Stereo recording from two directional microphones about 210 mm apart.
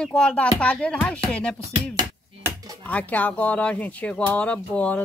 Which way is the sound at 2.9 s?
5° left (ahead or behind).